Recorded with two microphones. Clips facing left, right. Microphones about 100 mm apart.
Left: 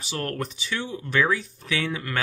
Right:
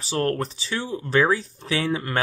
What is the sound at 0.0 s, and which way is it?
Speech, 30° right (ahead or behind).